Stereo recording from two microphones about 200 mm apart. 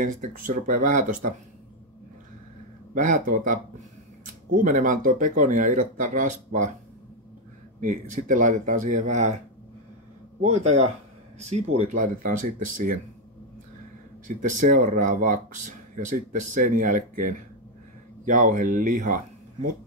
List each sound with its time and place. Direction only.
0.0 s speech: 40° right (ahead or behind)
2.9 s speech: 40° right (ahead or behind)
7.8 s speech: 40° right (ahead or behind)
10.4 s speech: 35° right (ahead or behind)
14.2 s speech: 40° right (ahead or behind)